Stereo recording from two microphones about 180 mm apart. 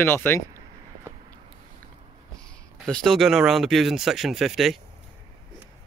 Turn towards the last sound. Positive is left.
turn(degrees=0)  # may be behind; listen again after turning